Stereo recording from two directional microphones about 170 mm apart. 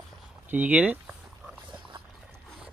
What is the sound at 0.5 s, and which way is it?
Speech, 10° right (ahead or behind).